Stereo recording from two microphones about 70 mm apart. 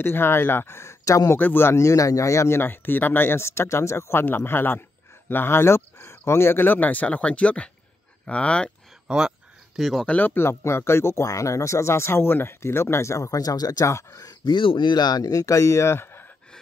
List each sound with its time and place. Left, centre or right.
0.0 s speech: left
1.4 s speech: left; by 8.7 s centre
9.0 s speech: centre
10.0 s speech: left
10.3 s speech: left